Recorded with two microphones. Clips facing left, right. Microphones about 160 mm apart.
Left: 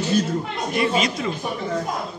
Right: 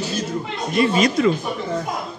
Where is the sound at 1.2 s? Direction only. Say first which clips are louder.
Right 9 dB; 60° right (ahead or behind).